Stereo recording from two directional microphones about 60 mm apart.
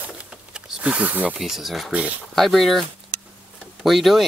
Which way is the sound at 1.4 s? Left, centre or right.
Centre.